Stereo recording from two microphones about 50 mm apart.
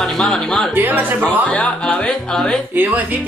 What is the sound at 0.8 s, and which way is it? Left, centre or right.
Speech, right.